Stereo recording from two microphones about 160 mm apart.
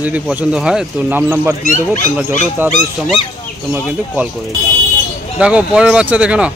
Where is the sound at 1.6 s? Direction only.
55° left (ahead or behind).